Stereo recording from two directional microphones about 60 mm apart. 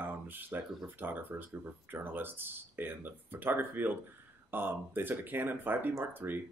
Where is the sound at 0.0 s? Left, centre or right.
Right.